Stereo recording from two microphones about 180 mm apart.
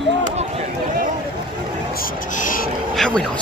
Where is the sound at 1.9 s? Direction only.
50° left (ahead or behind).